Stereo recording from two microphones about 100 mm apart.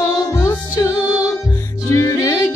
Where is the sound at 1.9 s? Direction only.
30° left (ahead or behind).